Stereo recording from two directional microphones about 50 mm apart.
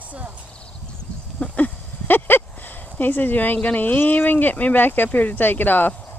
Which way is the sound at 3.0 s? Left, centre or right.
Left.